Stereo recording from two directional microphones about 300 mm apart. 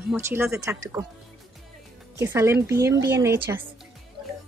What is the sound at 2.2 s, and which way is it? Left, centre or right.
A woman's voice, centre.